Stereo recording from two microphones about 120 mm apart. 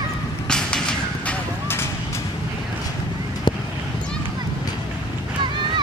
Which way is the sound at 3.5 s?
40° left (ahead or behind).